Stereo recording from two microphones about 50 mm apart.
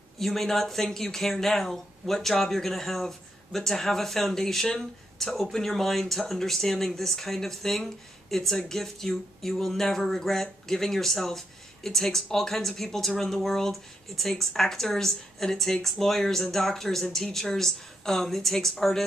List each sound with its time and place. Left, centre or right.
0.2 s speech: centre